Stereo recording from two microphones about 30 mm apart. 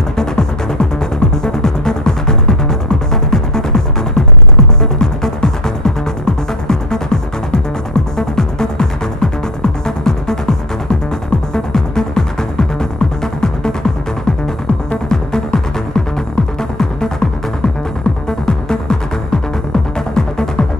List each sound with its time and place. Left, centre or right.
0.2 s music: left
15.0 s music: left
16.7 s music: centre
18.4 s music: left